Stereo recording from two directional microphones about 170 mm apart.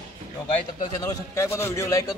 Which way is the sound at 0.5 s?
25° left (ahead or behind).